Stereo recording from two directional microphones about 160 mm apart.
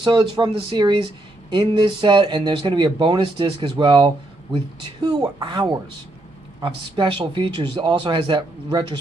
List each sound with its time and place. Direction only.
0.0 s speech: 30° right (ahead or behind)